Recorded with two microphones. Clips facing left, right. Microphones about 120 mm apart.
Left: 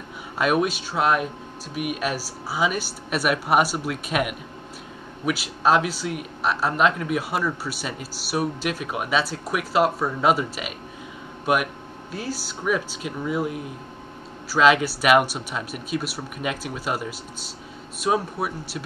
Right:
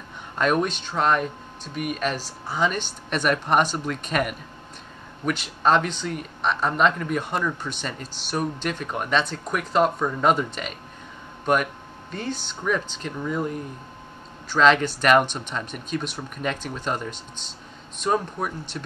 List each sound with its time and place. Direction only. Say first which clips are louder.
0.4 s speech: left 1 dB; 5° left (ahead or behind)